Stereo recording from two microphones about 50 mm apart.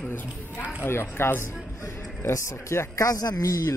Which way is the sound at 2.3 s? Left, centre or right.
Left.